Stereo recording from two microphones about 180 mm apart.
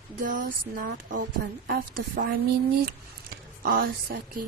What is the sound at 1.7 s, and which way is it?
Speech, 55° right (ahead or behind).